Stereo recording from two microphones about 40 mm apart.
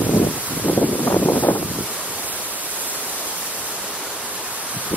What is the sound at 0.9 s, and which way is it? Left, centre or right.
Wind noise, left.